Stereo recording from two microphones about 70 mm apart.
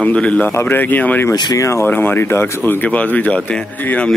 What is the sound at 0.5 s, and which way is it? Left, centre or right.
Speech, left.